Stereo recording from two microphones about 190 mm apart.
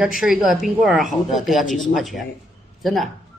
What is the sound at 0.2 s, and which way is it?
A woman's voice, centre (ahead or behind).